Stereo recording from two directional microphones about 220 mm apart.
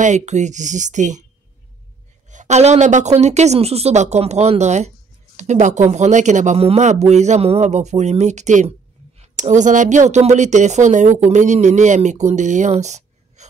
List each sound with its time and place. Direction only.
0.0 s a woman's voice: 30° right (ahead or behind)
2.2 s a woman's voice: 35° right (ahead or behind)